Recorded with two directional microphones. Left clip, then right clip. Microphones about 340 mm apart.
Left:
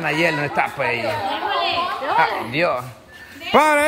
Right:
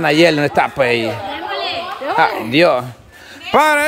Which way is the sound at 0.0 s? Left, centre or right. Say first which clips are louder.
Right 7 dB; centre.